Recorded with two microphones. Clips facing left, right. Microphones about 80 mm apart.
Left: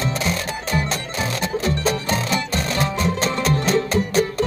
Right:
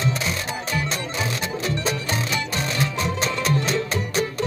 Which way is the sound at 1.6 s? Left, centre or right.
Left.